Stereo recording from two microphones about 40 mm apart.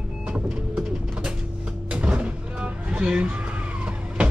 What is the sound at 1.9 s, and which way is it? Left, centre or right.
Vehicle, right.